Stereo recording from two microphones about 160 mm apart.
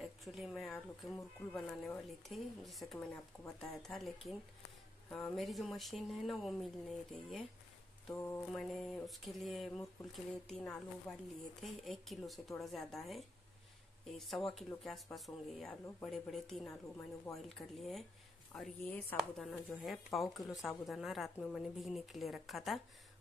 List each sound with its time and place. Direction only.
0.0 s speech: centre (ahead or behind)
8.1 s a woman's voice: 15° left (ahead or behind)
8.5 s a woman's voice: centre (ahead or behind)
19.1 s speech: centre (ahead or behind)